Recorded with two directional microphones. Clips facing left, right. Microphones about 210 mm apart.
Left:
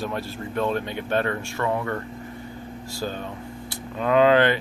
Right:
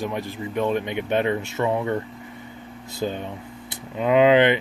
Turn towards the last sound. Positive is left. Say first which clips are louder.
# right 2 dB
turn(degrees=-20)  # may be behind; listen again after turning